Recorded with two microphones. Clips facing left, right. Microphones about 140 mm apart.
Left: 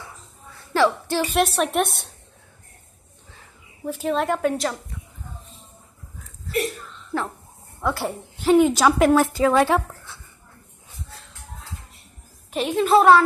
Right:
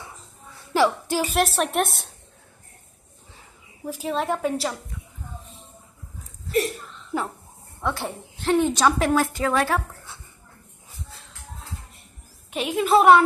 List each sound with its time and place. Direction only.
0.7 s a woman's voice: 10° right (ahead or behind)
3.8 s a woman's voice: centre (ahead or behind)
7.1 s dog: 15° right (ahead or behind)
7.8 s a woman's voice: 5° left (ahead or behind)
9.2 s a woman's voice: 25° left (ahead or behind)
12.5 s a woman's voice: 5° right (ahead or behind)